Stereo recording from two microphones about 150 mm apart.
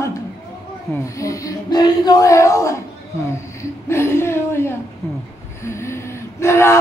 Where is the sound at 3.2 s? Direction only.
15° left (ahead or behind).